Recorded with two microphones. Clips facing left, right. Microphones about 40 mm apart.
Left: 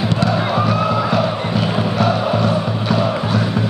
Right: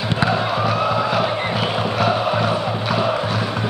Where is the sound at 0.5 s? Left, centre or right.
Centre.